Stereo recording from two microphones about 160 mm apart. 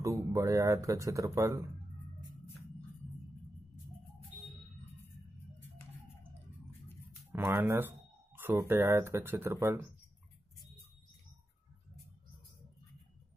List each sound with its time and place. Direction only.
0.0 s speech: 20° right (ahead or behind)
7.3 s speech: 10° right (ahead or behind)